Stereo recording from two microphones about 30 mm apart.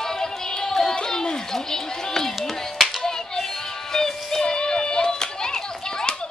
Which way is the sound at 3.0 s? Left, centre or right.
Centre.